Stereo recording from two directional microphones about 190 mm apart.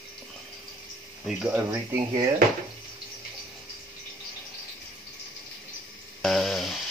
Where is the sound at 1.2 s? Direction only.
5° right (ahead or behind).